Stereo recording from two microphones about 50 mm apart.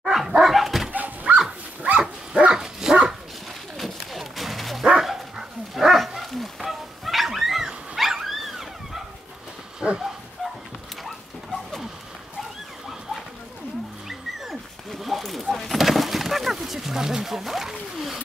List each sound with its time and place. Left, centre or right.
0.0 s dog: centre
0.9 s dog: right
2.0 s dog: centre
3.7 s dog: centre
11.1 s a sound: centre
14.0 s dog: centre